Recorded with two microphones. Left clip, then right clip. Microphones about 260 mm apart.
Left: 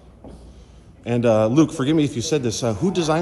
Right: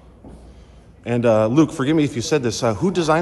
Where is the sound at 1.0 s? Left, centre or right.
Centre.